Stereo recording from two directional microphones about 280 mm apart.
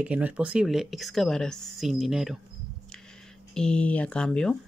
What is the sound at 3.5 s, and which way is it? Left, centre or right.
Speech, centre.